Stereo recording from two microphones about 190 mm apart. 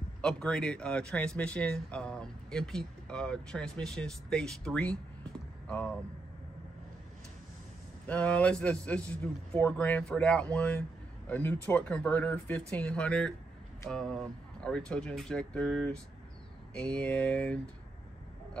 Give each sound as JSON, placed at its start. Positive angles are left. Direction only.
{"t": 0.2, "sound": "a man's voice", "side_deg": 5}
{"t": 8.1, "sound": "a man's voice", "side_deg": 5}